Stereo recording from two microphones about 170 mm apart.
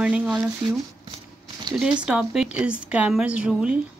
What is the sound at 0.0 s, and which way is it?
Speech, 5° right (ahead or behind).